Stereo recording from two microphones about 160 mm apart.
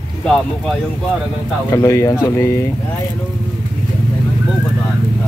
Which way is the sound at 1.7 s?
20° left (ahead or behind).